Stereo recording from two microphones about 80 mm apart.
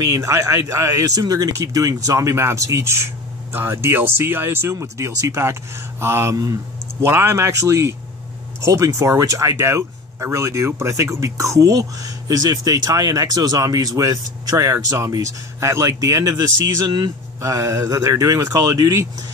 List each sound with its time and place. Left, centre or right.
0.0 s speech: right
6.3 s speech: right
7.0 s speech: right
17.4 s speech: right